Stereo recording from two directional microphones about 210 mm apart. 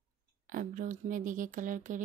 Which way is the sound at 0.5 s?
40° right (ahead or behind).